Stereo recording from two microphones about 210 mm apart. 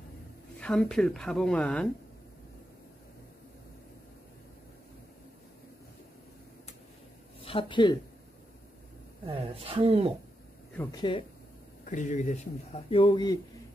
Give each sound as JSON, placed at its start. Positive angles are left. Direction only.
{"t": 0.6, "sound": "speech", "side_deg": 5}
{"t": 7.4, "sound": "speech", "side_deg": 25}
{"t": 9.2, "sound": "a woman's voice", "side_deg": -25}
{"t": 10.8, "sound": "speech", "side_deg": 20}
{"t": 11.9, "sound": "speech", "side_deg": 35}